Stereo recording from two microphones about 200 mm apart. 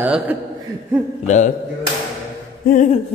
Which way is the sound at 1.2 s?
35° left (ahead or behind).